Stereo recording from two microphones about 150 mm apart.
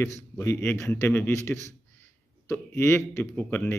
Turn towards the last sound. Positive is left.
turn(degrees=10)  # may be behind; listen again after turning